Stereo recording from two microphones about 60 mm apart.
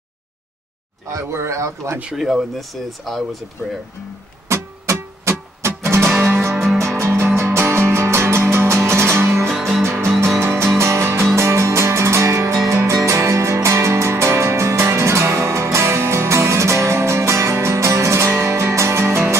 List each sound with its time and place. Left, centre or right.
1.1 s a man's voice: right
2.1 s speech: centre
4.5 s music: right
9.5 s music: centre
9.8 s music: right